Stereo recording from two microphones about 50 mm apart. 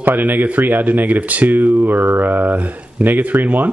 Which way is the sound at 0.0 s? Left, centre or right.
Right.